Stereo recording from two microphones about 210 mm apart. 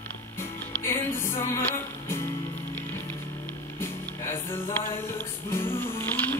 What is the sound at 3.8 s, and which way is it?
Music, 10° left (ahead or behind).